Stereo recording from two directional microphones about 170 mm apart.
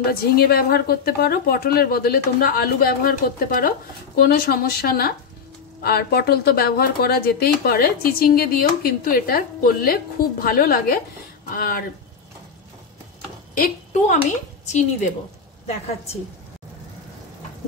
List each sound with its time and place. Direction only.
0.1 s speech: 65° left (ahead or behind)
13.6 s a woman's voice: 55° left (ahead or behind)
14.7 s a woman's voice: 45° left (ahead or behind)